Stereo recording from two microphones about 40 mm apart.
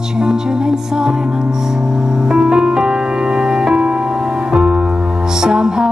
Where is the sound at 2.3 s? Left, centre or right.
Right.